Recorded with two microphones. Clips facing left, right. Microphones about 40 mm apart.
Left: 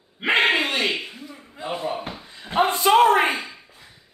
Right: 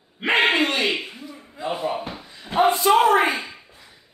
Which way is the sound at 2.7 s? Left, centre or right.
Left.